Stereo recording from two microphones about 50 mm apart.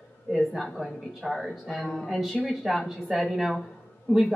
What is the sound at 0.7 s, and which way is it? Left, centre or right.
Speech, centre.